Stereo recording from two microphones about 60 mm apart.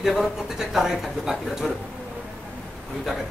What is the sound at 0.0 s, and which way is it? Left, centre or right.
Speech, centre.